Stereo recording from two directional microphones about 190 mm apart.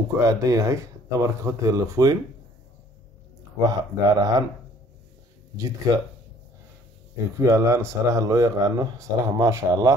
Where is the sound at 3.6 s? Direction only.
20° right (ahead or behind).